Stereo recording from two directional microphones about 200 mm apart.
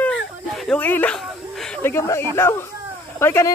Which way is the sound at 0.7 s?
10° left (ahead or behind).